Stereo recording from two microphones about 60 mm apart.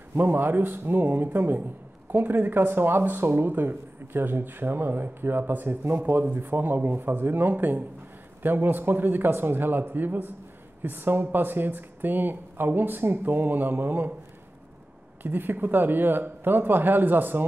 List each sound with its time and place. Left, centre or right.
0.1 s speech: right
15.2 s speech: right